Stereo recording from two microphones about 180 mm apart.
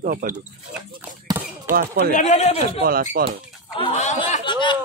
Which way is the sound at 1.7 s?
50° right (ahead or behind).